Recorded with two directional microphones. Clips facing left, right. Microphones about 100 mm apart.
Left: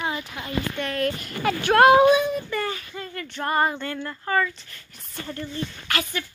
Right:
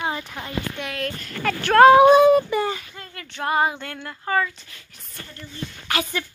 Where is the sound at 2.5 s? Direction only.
20° right (ahead or behind).